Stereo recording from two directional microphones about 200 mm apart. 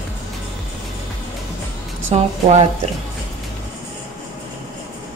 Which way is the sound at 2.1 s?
30° right (ahead or behind).